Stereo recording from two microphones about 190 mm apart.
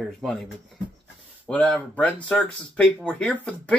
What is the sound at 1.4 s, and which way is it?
Speech, 5° left (ahead or behind).